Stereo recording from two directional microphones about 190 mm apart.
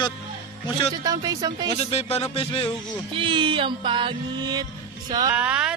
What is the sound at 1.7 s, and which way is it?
Speech, 35° left (ahead or behind).